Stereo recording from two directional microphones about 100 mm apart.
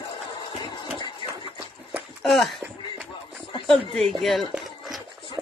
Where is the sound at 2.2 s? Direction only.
Centre (ahead or behind).